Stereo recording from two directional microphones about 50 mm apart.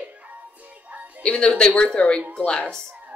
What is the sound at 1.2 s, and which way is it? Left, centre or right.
Speech, centre.